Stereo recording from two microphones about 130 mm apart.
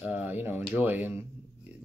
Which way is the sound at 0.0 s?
10° right (ahead or behind).